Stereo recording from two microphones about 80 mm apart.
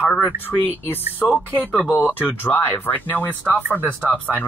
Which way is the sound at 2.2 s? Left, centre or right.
Left.